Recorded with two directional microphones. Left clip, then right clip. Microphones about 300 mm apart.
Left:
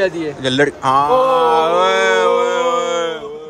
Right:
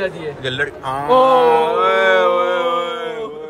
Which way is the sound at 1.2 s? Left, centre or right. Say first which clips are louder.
Right 2 dB; right.